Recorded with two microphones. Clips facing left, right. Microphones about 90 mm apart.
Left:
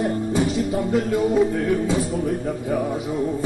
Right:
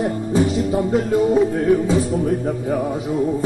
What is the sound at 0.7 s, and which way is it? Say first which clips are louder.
Music: right 5 dB; 20° right (ahead or behind).